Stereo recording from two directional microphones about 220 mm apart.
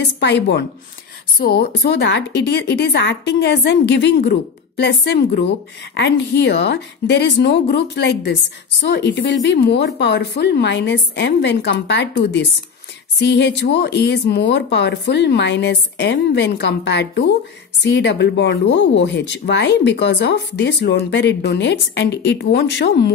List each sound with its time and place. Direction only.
0.0 s speech: 50° left (ahead or behind)
13.2 s speech: 50° left (ahead or behind)